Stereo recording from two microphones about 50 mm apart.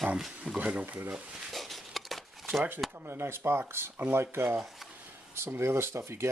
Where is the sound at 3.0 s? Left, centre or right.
Right.